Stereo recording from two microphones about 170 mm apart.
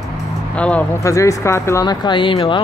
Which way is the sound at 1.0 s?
20° left (ahead or behind).